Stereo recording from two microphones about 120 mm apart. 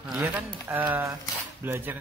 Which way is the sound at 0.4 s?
15° right (ahead or behind).